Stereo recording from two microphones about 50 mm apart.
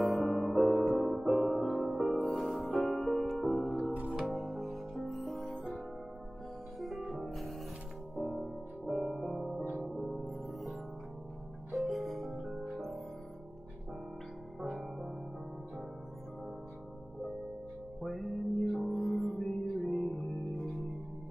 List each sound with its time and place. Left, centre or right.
0.0 s music: centre
3.4 s music: centre
4.3 s music: centre
5.5 s music: centre
6.8 s music: centre
9.6 s music: centre
9.8 s music: centre
14.6 s music: centre
18.0 s music: centre